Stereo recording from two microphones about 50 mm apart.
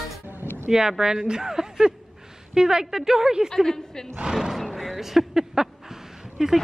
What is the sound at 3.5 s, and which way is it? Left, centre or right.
Speech, centre.